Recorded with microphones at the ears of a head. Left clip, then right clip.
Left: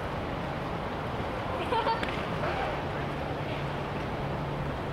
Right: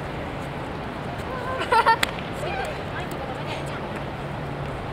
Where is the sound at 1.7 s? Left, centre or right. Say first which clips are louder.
Right 11 dB; right.